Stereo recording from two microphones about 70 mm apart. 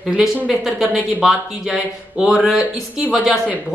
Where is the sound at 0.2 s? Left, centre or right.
Centre.